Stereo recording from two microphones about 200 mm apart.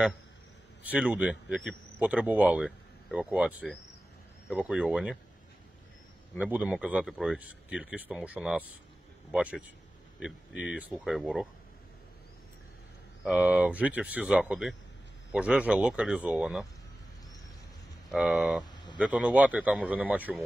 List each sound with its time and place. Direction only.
0.9 s speech: 5° right (ahead or behind)
6.3 s speech: 5° right (ahead or behind)
13.2 s speech: 5° right (ahead or behind)
18.1 s speech: centre (ahead or behind)
18.6 s a sound: 20° left (ahead or behind)
18.9 s speech: 5° right (ahead or behind)